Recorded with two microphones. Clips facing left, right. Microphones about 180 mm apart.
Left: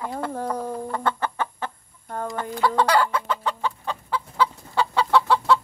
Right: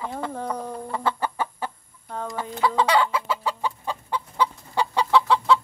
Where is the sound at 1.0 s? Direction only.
10° right (ahead or behind).